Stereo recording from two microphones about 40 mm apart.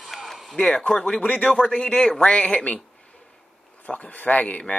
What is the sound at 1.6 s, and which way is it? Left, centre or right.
Speech, left.